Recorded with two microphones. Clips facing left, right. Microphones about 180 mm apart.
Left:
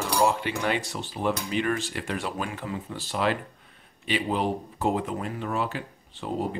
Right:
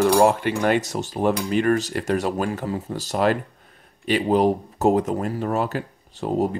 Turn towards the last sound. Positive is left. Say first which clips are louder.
# right 7 dB
turn(degrees=-45)  # may be behind; listen again after turning